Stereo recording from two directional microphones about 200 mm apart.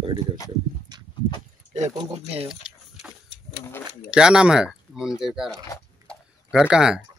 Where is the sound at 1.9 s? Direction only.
20° right (ahead or behind).